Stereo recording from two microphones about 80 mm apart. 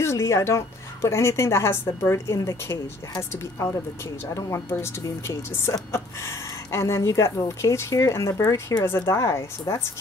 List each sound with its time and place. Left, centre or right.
0.0 s speech: left